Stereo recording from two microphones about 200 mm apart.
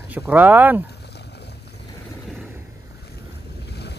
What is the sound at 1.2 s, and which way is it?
Boat, 55° left (ahead or behind).